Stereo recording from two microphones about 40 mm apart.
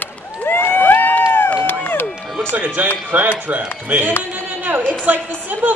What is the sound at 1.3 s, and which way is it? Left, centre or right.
Run, left.